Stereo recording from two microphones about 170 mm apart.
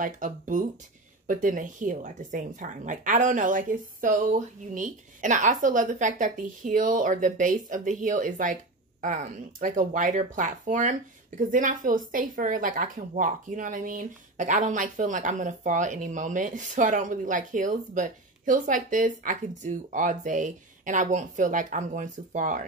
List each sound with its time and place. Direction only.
0.0 s speech: 50° right (ahead or behind)